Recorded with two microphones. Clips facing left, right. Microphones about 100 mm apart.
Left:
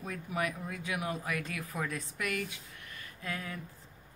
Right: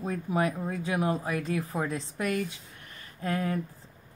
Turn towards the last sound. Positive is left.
turn(degrees=-45)  # may be behind; listen again after turning